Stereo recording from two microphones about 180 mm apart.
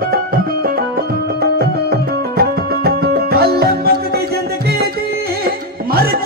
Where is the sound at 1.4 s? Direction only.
60° right (ahead or behind).